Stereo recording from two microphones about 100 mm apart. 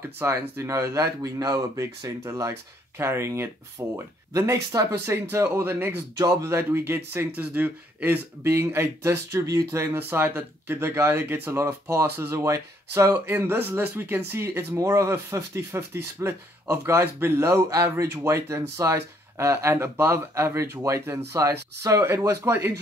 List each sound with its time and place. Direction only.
0.2 s speech: 25° right (ahead or behind)
5.0 s speech: 25° right (ahead or behind)
6.1 s speech: 40° right (ahead or behind)
6.5 s speech: 25° right (ahead or behind)
9.9 s speech: 20° right (ahead or behind)
13.1 s speech: 20° right (ahead or behind)